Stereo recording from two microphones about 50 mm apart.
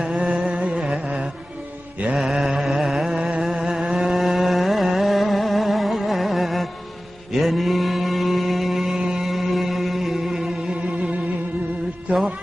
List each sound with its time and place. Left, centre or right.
0.4 s music: right
2.1 s carnatic music: centre
7.3 s mantra: centre
9.2 s music: centre
10.7 s music: right